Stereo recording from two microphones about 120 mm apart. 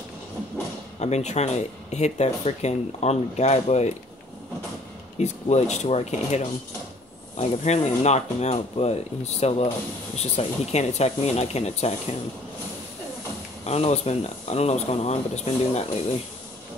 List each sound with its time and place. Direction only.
0.9 s speech: 70° left (ahead or behind)
5.2 s speech: 70° left (ahead or behind)
13.7 s speech: 60° left (ahead or behind)